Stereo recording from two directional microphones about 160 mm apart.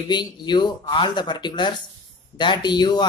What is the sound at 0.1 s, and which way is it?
Speech, 30° left (ahead or behind).